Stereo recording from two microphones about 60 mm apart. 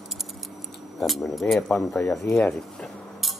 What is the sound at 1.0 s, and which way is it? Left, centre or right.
Speech, centre.